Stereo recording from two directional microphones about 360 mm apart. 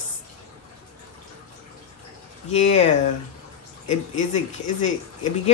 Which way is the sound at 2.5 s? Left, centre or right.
Centre.